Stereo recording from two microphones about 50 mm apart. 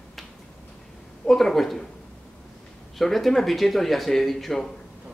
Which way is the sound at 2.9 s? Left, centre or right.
Centre.